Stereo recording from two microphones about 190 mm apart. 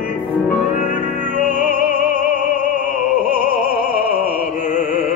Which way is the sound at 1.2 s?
45° right (ahead or behind).